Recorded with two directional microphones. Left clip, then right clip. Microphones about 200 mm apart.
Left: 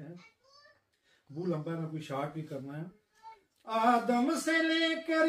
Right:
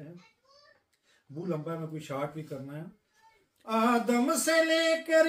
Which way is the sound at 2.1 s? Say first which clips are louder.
Right 2 dB; 25° right (ahead or behind).